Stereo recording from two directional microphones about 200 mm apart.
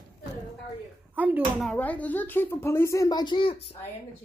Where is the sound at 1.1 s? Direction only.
10° right (ahead or behind); by 3.6 s 25° left (ahead or behind).